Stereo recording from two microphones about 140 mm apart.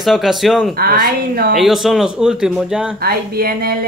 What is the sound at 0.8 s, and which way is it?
Speech, 90° right.